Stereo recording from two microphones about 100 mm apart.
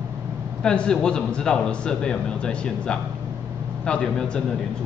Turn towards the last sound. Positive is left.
turn(degrees=10)  # may be behind; listen again after turning